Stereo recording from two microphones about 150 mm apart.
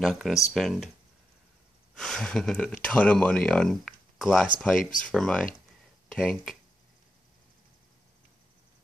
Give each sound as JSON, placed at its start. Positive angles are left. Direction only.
{"t": 0.0, "sound": "speech", "side_deg": 0}
{"t": 2.0, "sound": "speech", "side_deg": 5}